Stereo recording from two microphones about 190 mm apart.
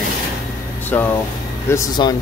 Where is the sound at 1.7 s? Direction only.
20° left (ahead or behind).